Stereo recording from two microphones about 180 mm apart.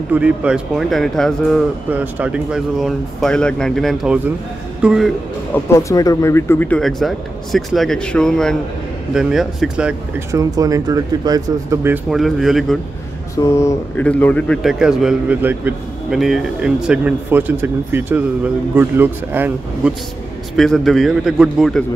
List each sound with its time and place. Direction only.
0.1 s speech: 5° right (ahead or behind)
1.9 s speech: 10° right (ahead or behind)
5.5 s speech: 15° left (ahead or behind)
6.8 s speech: centre (ahead or behind)
10.3 s speech: 20° right (ahead or behind)
12.1 s speech: centre (ahead or behind)
13.4 s speech: 15° left (ahead or behind); by 19.9 s 10° right (ahead or behind)
20.5 s speech: centre (ahead or behind)